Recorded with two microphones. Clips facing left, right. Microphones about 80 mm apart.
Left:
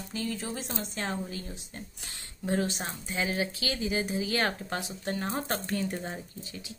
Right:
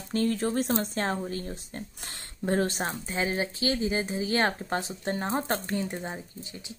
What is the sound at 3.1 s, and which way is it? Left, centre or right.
Speech, right.